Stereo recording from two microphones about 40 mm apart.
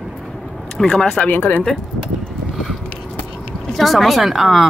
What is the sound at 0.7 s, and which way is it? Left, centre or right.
Speech, left.